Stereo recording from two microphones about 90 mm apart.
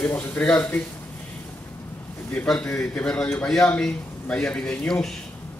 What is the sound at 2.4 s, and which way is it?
A man's voice, 10° left (ahead or behind).